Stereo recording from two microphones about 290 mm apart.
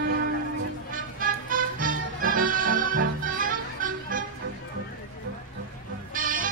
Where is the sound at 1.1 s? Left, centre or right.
Right.